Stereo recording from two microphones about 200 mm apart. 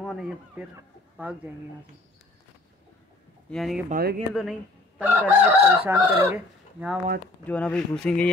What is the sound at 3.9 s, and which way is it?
Speech, 50° right (ahead or behind).